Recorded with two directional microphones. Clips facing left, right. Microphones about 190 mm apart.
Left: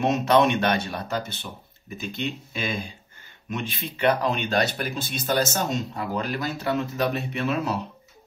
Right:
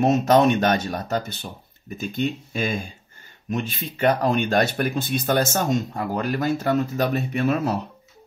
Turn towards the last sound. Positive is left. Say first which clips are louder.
# right 4 dB
turn(degrees=-45)  # may be behind; listen again after turning